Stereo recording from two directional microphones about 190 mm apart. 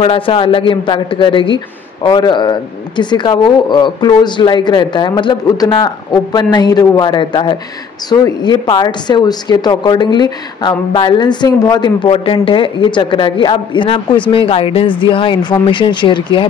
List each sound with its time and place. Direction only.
0.0 s speech: 30° left (ahead or behind)